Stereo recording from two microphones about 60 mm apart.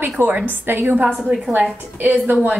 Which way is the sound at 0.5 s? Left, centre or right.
Right.